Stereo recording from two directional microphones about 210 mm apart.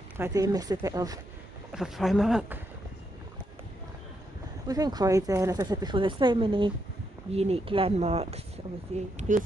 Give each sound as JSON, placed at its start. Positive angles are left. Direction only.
{"t": 0.2, "sound": "speech", "side_deg": -15}
{"t": 1.7, "sound": "speech", "side_deg": 0}
{"t": 4.6, "sound": "speech", "side_deg": -20}